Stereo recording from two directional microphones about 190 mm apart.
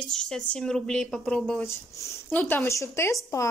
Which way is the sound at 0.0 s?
5° left (ahead or behind).